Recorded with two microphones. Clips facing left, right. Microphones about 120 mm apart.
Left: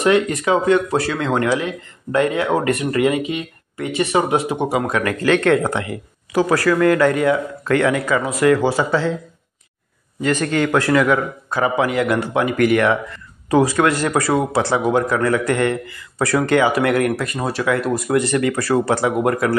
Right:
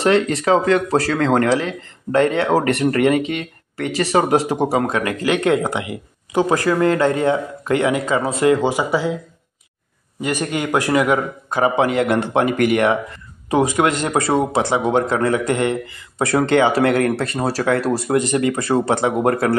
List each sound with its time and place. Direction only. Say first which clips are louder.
0.0 s speech: even; 30° right (ahead or behind)
3.8 s speech: right 1 dB; 35° right (ahead or behind); by 9.1 s 15° right (ahead or behind)
10.2 s speech: left 3 dB; 15° right (ahead or behind); by 19.5 s 30° right (ahead or behind)